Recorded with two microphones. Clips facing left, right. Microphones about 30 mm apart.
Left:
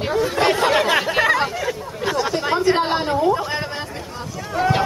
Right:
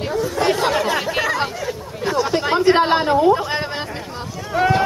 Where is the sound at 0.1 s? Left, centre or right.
Left.